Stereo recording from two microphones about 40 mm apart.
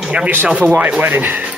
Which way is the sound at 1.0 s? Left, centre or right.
Right.